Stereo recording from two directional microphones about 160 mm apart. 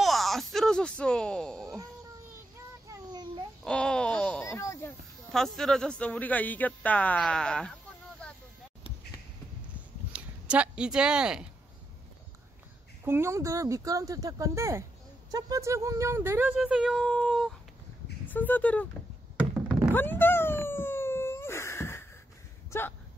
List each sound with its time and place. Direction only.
0.0 s speech: centre (ahead or behind)
2.9 s a sound: 25° right (ahead or behind)
3.6 s wail: 5° left (ahead or behind)
4.5 s a sound: 20° left (ahead or behind)
5.3 s a man's voice: 5° left (ahead or behind)
8.2 s vehicle: 5° left (ahead or behind)
10.1 s speech: 5° right (ahead or behind)
13.0 s a man's voice: 15° right (ahead or behind); by 18.9 s 10° left (ahead or behind)
19.9 s wail: 15° left (ahead or behind)
22.7 s speech: 15° left (ahead or behind)